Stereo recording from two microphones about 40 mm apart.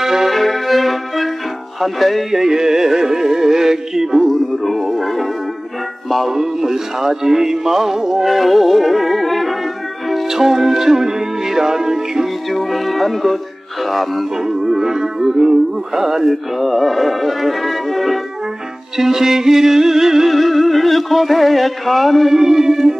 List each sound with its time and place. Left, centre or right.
0.0 s music: centre
0.3 s music: centre
2.3 s music: centre
4.3 s music: centre
6.3 s music: centre
10.2 s music: centre
12.4 s music: centre
14.3 s music: centre
16.3 s music: centre
20.2 s music: centre
22.3 s music: centre